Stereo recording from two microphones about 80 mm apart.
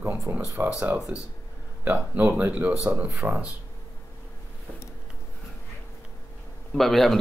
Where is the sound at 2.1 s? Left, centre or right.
Right.